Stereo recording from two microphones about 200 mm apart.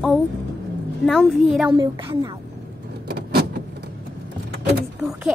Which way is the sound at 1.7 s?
20° right (ahead or behind).